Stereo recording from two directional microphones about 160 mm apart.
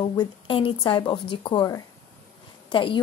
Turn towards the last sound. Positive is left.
turn(degrees=30)  # may be behind; listen again after turning